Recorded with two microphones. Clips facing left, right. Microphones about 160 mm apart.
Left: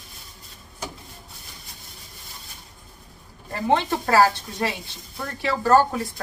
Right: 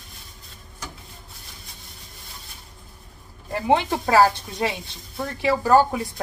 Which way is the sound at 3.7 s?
15° right (ahead or behind).